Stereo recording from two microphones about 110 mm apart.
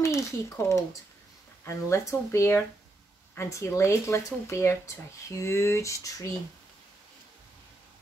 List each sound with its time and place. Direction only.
0.0 s speech: 25° left (ahead or behind)